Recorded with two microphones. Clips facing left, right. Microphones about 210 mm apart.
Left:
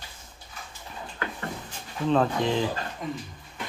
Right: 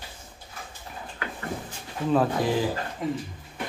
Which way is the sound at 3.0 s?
25° right (ahead or behind).